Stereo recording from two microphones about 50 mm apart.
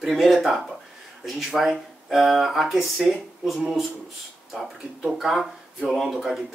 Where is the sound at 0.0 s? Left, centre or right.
Centre.